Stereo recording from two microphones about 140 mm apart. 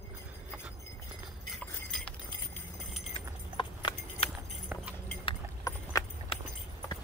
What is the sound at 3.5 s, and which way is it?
Clip-clop, 40° left (ahead or behind).